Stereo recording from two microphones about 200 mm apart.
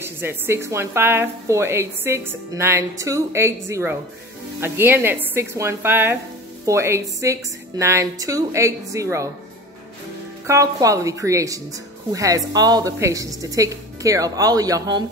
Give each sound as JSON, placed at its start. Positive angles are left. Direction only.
{"t": 0.0, "sound": "a woman's voice", "side_deg": -10}
{"t": 10.4, "sound": "a woman's voice", "side_deg": -15}